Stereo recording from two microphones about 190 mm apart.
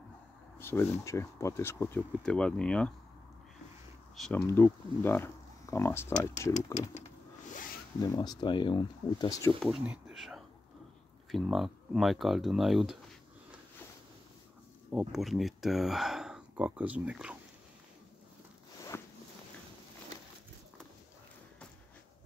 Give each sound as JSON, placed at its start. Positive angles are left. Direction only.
{"t": 0.6, "sound": "speech", "side_deg": 10}
{"t": 4.2, "sound": "speech", "side_deg": 10}
{"t": 8.0, "sound": "speech", "side_deg": 20}
{"t": 9.6, "sound": "speech", "side_deg": -5}
{"t": 14.9, "sound": "speech", "side_deg": -5}